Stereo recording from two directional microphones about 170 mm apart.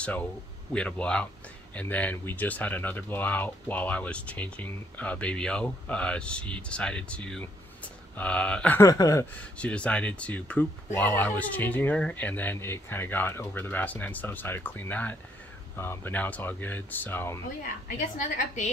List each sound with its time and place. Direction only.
0.0 s speech: 10° left (ahead or behind)
9.6 s speech: 5° left (ahead or behind)
17.8 s a woman's voice: 50° left (ahead or behind)